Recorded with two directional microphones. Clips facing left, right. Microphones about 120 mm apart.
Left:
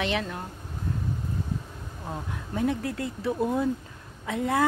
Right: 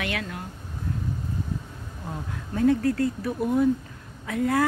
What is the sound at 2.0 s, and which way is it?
Speech, 15° left (ahead or behind).